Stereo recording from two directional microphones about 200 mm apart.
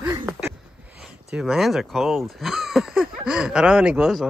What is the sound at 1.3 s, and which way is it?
Speech, centre (ahead or behind).